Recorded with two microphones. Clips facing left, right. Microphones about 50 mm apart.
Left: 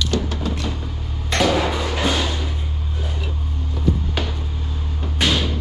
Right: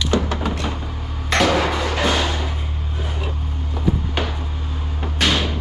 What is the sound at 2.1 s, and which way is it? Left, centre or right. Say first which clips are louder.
Music: right 1 dB; right.